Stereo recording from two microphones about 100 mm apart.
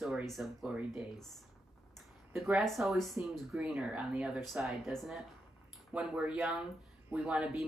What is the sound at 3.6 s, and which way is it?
Speech, 10° right (ahead or behind).